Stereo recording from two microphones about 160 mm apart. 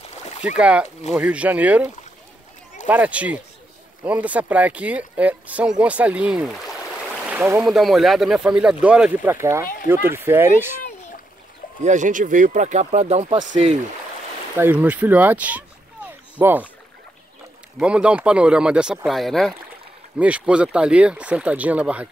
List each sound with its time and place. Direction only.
0.6 s speech: 5° right (ahead or behind)
2.9 s speech: 10° right (ahead or behind)
7.6 s speech: centre (ahead or behind)
11.8 s speech: 50° right (ahead or behind)
14.6 s speech: 10° right (ahead or behind)
17.7 s speech: 5° right (ahead or behind)